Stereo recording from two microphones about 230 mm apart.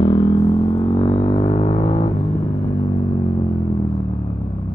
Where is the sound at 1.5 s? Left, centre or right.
Left.